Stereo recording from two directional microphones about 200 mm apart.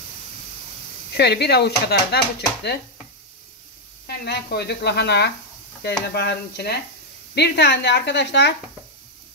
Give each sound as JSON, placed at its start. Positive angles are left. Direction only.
{"t": 1.1, "sound": "speech", "side_deg": 55}
{"t": 4.2, "sound": "speech", "side_deg": 55}